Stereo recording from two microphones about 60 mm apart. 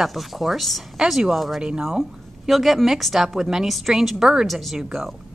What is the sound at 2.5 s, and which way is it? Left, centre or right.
A woman's voice, centre.